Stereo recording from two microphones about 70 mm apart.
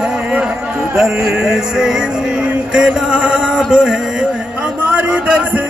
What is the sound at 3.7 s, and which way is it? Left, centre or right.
Music, centre.